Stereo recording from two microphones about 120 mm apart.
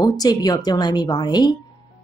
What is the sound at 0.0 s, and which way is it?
Speech, 35° left (ahead or behind).